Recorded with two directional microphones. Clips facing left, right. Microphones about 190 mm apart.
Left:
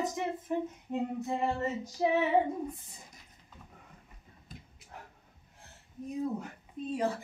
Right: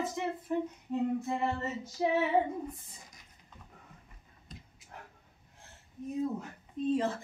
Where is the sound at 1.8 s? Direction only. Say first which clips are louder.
Even; 15° left (ahead or behind).